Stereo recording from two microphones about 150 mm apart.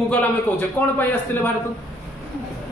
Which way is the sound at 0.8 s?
15° left (ahead or behind).